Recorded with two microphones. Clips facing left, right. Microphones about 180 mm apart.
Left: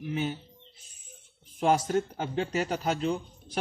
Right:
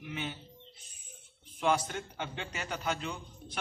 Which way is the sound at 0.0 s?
40° left (ahead or behind).